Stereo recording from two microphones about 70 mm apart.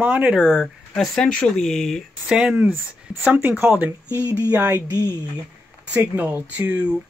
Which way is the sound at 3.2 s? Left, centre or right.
Right.